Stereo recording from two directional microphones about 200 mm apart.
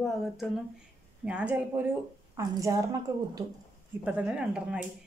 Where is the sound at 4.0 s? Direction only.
5° right (ahead or behind).